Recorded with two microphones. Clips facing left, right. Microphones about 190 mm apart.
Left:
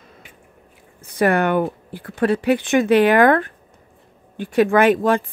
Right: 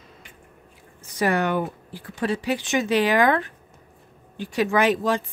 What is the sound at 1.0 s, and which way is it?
Speech, 55° left (ahead or behind).